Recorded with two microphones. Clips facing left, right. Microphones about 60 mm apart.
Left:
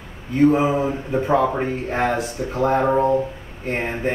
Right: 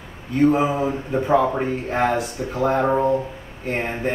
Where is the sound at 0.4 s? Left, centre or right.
Centre.